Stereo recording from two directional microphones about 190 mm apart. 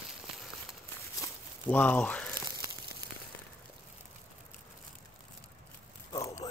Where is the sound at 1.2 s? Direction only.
10° left (ahead or behind).